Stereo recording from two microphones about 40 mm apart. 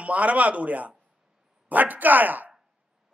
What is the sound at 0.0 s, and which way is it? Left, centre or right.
A man's voice, right.